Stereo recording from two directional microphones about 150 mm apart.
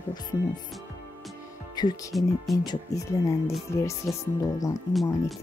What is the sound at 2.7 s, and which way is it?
Speech, 20° left (ahead or behind).